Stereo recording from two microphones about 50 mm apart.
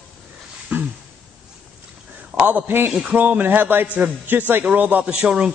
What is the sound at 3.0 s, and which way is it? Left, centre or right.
Speech, right.